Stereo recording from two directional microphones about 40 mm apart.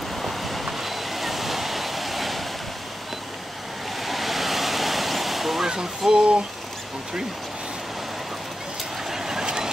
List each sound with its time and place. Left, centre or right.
0.1 s waves: centre
4.0 s waves: centre
5.7 s a sound: centre
9.1 s vehicle: centre